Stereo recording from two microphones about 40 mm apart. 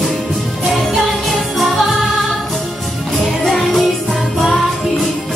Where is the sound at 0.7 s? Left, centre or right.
Centre.